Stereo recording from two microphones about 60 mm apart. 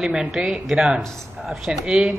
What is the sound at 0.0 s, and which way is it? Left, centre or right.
A woman's voice, centre.